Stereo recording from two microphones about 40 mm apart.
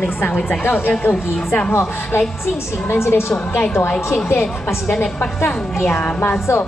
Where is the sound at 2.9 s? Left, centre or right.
Left.